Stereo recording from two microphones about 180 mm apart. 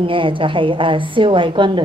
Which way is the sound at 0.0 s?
30° right (ahead or behind).